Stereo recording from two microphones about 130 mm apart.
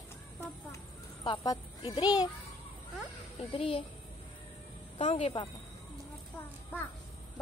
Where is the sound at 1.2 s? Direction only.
35° left (ahead or behind).